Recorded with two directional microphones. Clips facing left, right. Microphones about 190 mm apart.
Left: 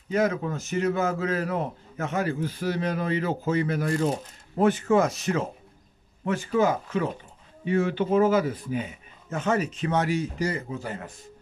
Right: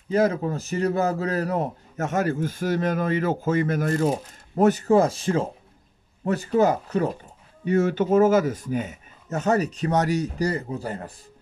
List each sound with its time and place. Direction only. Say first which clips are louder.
0.1 s a man's voice: right 3 dB; 30° right (ahead or behind)